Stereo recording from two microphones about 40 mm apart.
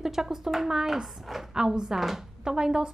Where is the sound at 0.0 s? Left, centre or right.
Centre.